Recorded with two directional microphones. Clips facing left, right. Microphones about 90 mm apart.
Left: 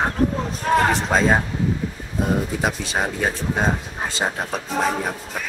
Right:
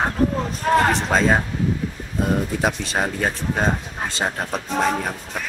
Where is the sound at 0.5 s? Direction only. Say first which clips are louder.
Even; centre (ahead or behind).